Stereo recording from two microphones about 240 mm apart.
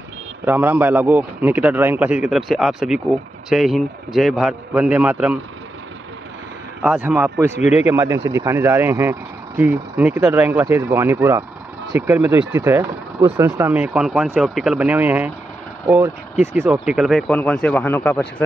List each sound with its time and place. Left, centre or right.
0.5 s a man's voice: centre
6.8 s speech: centre
16.7 s a man's voice: centre